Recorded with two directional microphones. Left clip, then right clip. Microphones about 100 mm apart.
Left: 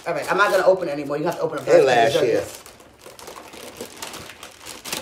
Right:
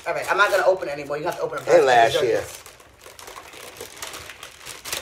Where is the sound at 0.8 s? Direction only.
20° left (ahead or behind).